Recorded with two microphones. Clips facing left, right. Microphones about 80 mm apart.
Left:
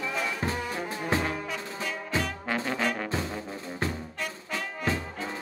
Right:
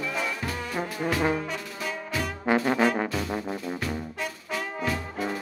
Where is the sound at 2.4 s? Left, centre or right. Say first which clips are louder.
Right 11 dB; right.